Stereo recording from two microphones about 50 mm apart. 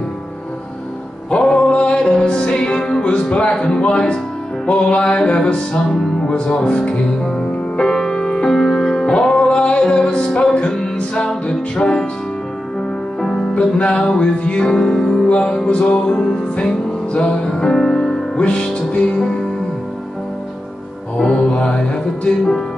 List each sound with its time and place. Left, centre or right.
1.4 s music: centre
13.7 s music: centre
15.2 s music: left
21.2 s music: centre